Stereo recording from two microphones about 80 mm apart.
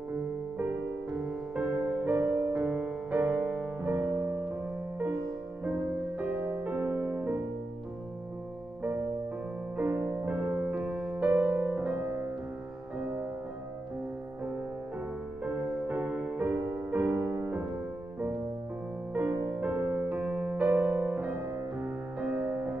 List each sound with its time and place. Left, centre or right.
1.5 s music: centre
3.8 s music: right
5.6 s music: centre
9.8 s music: right
15.4 s music: centre
16.5 s music: right
19.1 s music: right